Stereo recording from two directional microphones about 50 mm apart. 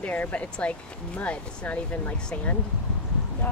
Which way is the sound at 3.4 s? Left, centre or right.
Left.